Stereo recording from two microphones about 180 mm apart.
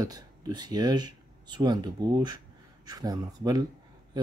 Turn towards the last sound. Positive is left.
turn(degrees=-20)  # may be behind; listen again after turning